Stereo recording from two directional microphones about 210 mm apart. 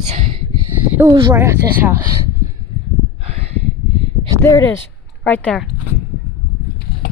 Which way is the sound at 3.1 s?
30° right (ahead or behind).